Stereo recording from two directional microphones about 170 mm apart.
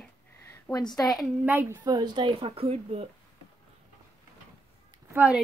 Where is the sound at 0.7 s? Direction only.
20° left (ahead or behind).